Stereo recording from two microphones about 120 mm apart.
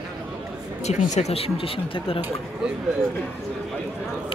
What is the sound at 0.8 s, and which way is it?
Speech, 70° left (ahead or behind).